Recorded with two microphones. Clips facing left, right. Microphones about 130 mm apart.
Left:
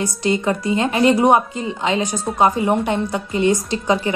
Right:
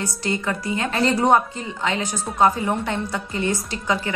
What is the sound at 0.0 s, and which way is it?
A woman's voice, 20° left (ahead or behind).